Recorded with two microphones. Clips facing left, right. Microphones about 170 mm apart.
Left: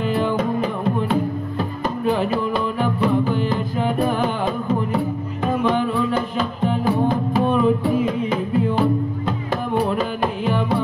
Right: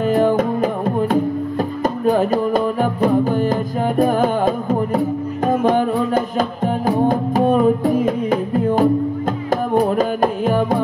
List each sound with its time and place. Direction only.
0.0 s music: 45° right (ahead or behind)